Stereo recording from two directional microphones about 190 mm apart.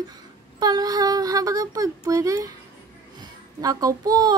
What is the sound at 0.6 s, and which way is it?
A child's voice, 20° right (ahead or behind).